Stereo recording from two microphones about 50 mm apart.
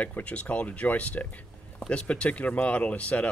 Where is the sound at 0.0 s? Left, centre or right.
Left.